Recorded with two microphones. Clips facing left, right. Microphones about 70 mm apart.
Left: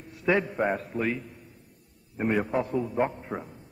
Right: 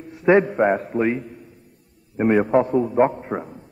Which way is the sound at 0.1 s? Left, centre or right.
Right.